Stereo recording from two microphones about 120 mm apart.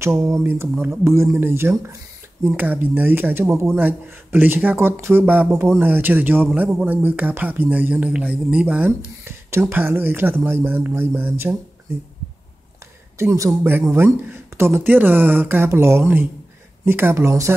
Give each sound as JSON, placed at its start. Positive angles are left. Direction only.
{"t": 0.0, "sound": "speech", "side_deg": -25}
{"t": 13.2, "sound": "speech", "side_deg": -25}